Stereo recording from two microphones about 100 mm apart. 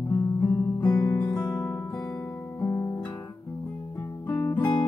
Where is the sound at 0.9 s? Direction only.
40° left (ahead or behind).